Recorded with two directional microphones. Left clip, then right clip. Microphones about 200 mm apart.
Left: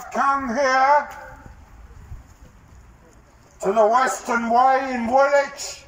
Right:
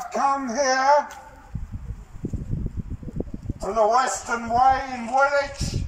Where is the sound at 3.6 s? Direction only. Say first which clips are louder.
Left 3 dB; 20° left (ahead or behind).